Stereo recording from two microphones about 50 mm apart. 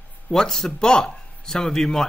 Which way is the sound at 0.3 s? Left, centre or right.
Centre.